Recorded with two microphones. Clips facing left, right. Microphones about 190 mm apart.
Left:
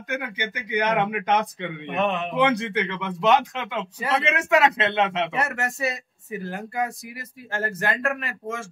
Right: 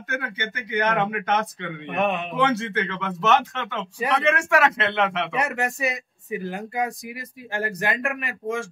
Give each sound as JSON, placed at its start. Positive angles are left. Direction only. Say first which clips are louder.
{"t": 0.1, "sound": "speech", "louder": "left 1 dB", "side_deg": 15}
{"t": 2.0, "sound": "speech", "louder": "right 1 dB", "side_deg": -15}
{"t": 2.2, "sound": "speech", "louder": "left 1 dB", "side_deg": 15}
{"t": 5.3, "sound": "speech", "louder": "right 2 dB", "side_deg": -15}